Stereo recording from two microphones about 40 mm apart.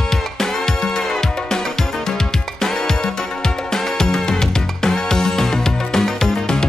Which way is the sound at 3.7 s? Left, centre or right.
Centre.